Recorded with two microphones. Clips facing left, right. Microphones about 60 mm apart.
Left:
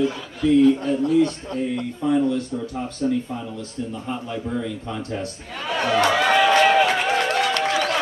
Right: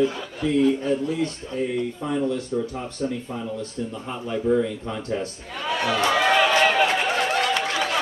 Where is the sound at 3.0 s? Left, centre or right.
Centre.